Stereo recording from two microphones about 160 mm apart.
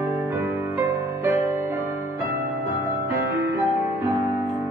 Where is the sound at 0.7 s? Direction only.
15° right (ahead or behind).